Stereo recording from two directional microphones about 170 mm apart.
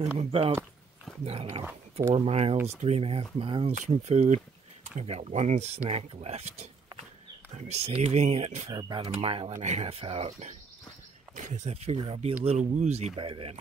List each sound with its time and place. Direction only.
0.0 s speech: 35° right (ahead or behind)
2.5 s speech: 15° right (ahead or behind)
2.8 s speech: 35° right (ahead or behind)
8.6 s speech: 25° right (ahead or behind)
11.3 s speech: 50° right (ahead or behind)